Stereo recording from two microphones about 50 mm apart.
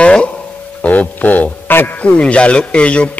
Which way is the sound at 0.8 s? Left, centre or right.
Left.